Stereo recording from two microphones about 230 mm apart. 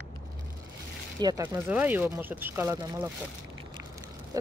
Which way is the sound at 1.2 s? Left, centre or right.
Centre.